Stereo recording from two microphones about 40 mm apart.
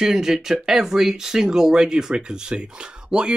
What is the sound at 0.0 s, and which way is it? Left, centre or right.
Speech, centre.